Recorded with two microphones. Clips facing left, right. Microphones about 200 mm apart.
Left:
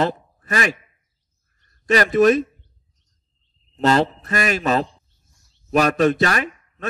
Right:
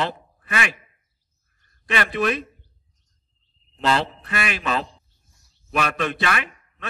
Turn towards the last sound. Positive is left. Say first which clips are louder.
# left 4 dB
turn(degrees=40)  # may be behind; listen again after turning